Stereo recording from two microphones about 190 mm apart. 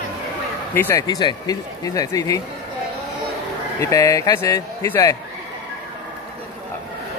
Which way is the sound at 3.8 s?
15° left (ahead or behind).